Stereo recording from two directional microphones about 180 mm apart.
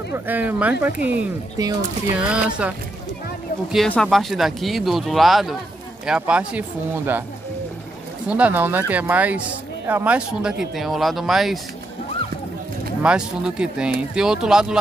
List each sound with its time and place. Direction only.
0.1 s speech: 10° right (ahead or behind)
1.6 s speech: 20° right (ahead or behind)
2.1 s speech: 5° right (ahead or behind)
3.7 s speech: 5° left (ahead or behind)
8.3 s speech: 10° right (ahead or behind)
13.0 s speech: 5° right (ahead or behind)